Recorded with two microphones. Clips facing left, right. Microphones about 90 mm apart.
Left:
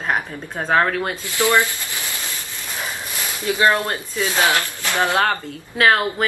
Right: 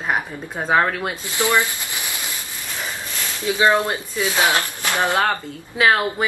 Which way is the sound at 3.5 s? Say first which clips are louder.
Right 1 dB; 15° right (ahead or behind).